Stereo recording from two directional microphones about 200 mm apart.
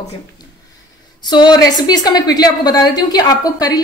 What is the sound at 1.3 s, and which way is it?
A woman's voice, 20° left (ahead or behind).